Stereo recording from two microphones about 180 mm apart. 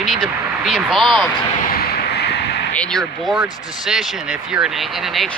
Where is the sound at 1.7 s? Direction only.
65° left (ahead or behind).